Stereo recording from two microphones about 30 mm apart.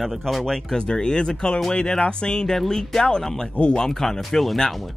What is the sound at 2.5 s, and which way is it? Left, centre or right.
Speech, centre.